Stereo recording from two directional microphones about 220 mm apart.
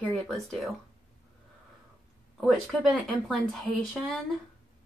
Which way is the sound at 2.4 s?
Centre (ahead or behind).